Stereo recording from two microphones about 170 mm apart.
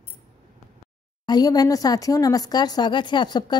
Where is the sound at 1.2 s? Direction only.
25° left (ahead or behind).